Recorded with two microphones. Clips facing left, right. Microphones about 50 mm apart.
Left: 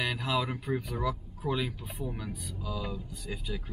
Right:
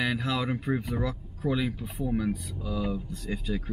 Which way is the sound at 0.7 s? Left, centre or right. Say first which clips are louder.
Right 4 dB; right.